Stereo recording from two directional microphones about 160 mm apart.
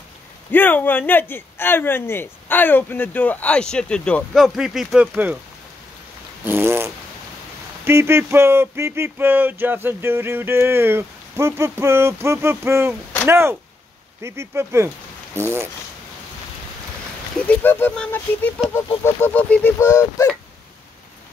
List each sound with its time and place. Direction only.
0.5 s a man's voice: 10° left (ahead or behind); by 5.4 s 10° right (ahead or behind)
6.4 s a sound: 15° right (ahead or behind)
17.5 s a man's voice: 10° left (ahead or behind)